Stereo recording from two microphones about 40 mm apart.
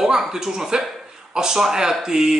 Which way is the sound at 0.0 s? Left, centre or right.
Centre.